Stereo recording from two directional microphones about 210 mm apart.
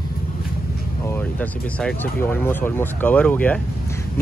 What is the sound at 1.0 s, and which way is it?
Speech, 10° left (ahead or behind).